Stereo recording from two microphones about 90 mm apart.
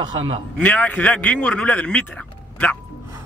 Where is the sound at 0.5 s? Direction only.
15° left (ahead or behind).